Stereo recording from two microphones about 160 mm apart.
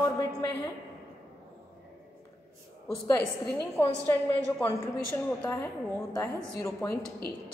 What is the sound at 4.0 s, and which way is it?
A woman's voice, 10° left (ahead or behind).